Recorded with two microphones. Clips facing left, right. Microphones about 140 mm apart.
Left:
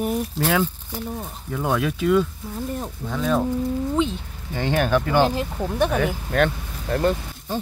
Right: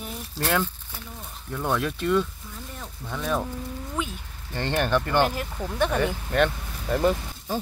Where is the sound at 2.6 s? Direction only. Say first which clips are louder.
Left 12 dB; 40° left (ahead or behind).